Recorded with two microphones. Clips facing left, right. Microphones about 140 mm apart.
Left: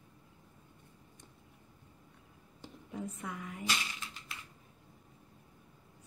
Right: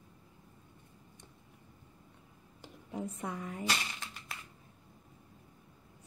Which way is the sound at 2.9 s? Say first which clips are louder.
Right 3 dB; 30° right (ahead or behind).